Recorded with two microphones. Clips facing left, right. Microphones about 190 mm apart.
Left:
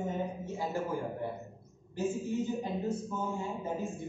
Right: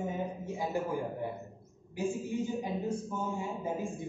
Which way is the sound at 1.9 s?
10° right (ahead or behind).